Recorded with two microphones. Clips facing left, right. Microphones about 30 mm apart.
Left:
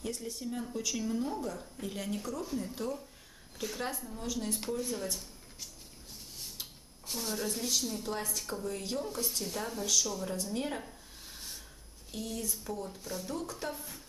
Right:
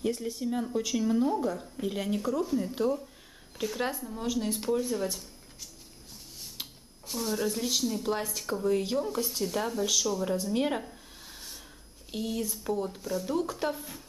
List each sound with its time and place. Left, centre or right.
0.0 s speech: centre
4.2 s speech: right
4.5 s speech: centre
6.6 s a sound: right
7.1 s speech: centre
10.5 s speech: right
10.8 s a sound: centre
12.1 s speech: right
13.0 s speech: centre; by 13.7 s right
13.7 s speech: centre